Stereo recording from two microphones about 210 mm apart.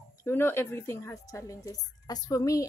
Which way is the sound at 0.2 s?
10° left (ahead or behind).